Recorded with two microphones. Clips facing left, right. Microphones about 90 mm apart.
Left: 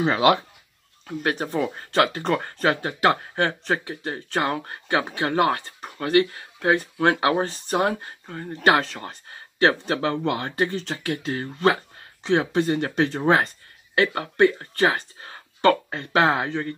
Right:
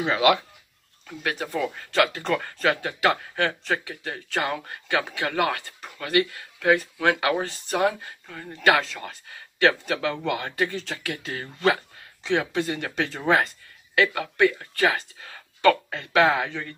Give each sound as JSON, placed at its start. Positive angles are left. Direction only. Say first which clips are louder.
{"t": 0.0, "sound": "speech", "louder": "left 2 dB", "side_deg": 35}